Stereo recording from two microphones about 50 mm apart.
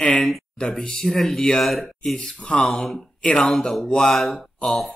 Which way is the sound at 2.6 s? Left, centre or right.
Centre.